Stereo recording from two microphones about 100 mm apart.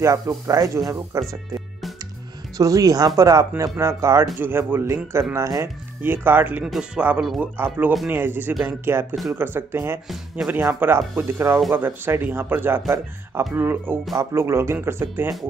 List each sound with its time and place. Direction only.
0.0 s speech: 35° right (ahead or behind)
2.5 s speech: 35° right (ahead or behind)
6.0 s speech: 20° right (ahead or behind)
6.6 s speech: 5° right (ahead or behind); by 9.9 s 25° right (ahead or behind)
10.0 s speech: 5° right (ahead or behind)
10.5 s speech: 20° right (ahead or behind)